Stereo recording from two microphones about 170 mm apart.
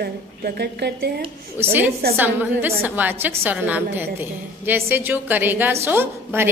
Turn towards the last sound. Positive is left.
turn(degrees=-15)  # may be behind; listen again after turning